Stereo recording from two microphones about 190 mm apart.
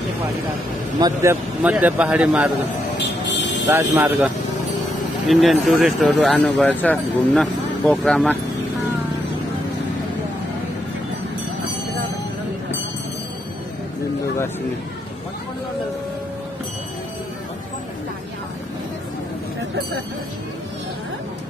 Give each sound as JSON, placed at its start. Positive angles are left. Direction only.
{"t": 0.9, "sound": "a man's voice", "side_deg": -15}
{"t": 3.3, "sound": "music", "side_deg": 70}
{"t": 3.7, "sound": "a man's voice", "side_deg": -10}
{"t": 5.3, "sound": "speech", "side_deg": 0}